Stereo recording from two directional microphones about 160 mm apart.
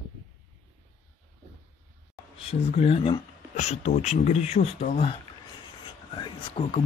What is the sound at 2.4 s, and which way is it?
Speech, 40° left (ahead or behind).